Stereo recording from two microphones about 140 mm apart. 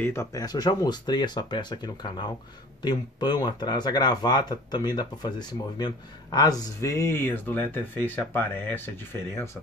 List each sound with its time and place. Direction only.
0.0 s speech: 20° left (ahead or behind)